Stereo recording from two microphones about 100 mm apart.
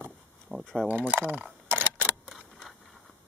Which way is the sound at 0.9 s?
20° right (ahead or behind).